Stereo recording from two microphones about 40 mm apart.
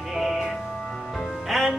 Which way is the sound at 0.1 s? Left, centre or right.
Centre.